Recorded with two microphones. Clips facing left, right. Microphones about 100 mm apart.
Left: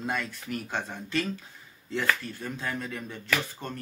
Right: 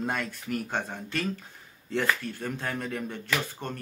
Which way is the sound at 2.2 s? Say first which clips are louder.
Right 2 dB; 55° right (ahead or behind).